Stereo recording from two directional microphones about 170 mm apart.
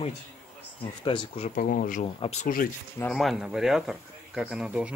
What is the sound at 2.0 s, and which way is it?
Speech, 40° left (ahead or behind).